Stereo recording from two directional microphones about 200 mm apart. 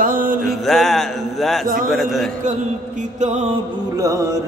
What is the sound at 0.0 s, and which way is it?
Music, 45° right (ahead or behind).